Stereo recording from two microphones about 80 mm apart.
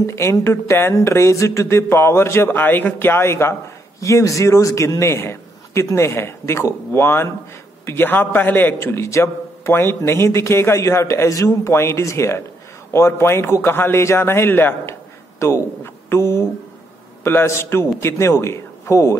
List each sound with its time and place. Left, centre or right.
0.0 s a man's voice: left
4.0 s a man's voice: left